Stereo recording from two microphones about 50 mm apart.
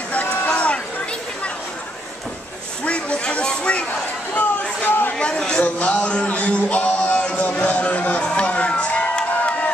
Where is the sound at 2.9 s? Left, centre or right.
Left.